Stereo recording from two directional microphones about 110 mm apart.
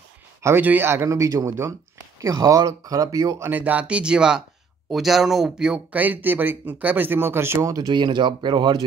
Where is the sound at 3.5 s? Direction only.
15° right (ahead or behind).